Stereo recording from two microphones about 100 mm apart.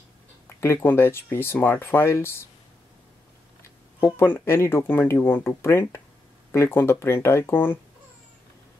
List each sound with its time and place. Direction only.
0.6 s speech: 25° left (ahead or behind)
4.0 s speech: 25° left (ahead or behind)